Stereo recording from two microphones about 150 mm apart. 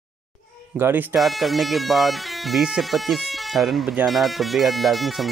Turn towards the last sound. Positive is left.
turn(degrees=0)  # may be behind; listen again after turning